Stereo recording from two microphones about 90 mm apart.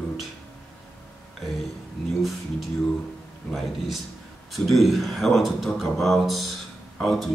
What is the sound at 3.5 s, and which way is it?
Speech, centre (ahead or behind).